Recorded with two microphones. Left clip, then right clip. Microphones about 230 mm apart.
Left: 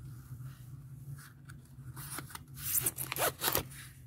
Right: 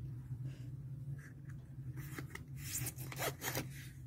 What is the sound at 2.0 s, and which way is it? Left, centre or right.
Zipper, left.